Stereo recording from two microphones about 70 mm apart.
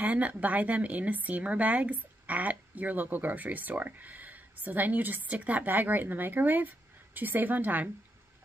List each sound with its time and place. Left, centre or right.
0.0 s speech: right